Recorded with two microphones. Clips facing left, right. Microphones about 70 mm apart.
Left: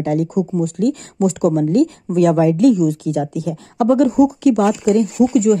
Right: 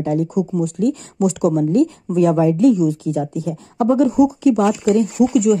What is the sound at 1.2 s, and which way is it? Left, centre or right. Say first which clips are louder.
Speech: left 1 dB; left.